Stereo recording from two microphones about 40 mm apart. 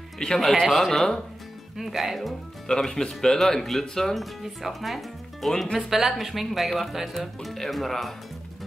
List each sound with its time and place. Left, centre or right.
0.2 s speech: centre
1.8 s speech: centre
2.7 s speech: centre
4.1 s speech: centre